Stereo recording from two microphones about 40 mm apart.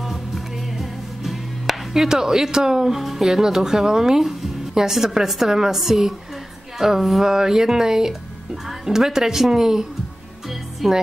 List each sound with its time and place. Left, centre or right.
0.0 s music: centre
2.0 s speech: centre
10.5 s music: centre